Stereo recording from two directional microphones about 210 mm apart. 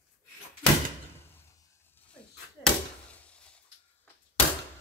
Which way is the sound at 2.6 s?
5° left (ahead or behind).